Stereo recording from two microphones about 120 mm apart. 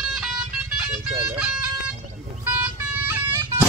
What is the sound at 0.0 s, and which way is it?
Music, 5° right (ahead or behind).